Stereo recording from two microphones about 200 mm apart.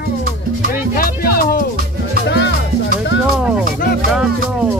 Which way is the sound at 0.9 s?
50° left (ahead or behind).